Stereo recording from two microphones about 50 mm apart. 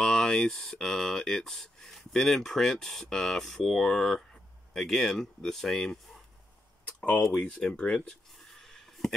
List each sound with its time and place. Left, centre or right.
0.0 s speech: centre
7.4 s speech: centre
8.5 s a sound: centre